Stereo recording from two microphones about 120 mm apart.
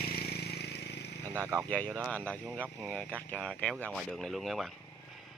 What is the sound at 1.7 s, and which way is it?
Speech, 10° left (ahead or behind).